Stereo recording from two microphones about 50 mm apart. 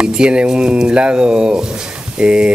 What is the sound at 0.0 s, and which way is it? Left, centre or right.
Speech, centre.